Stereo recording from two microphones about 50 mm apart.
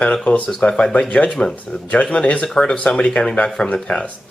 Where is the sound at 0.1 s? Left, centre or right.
Left.